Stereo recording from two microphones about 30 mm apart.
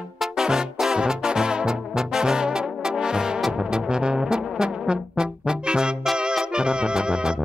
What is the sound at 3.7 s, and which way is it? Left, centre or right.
Brass instrument, right.